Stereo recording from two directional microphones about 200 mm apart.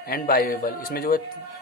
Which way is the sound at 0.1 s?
50° left (ahead or behind).